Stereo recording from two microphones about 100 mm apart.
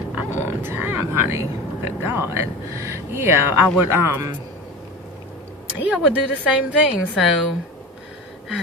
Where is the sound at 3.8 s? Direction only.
25° right (ahead or behind).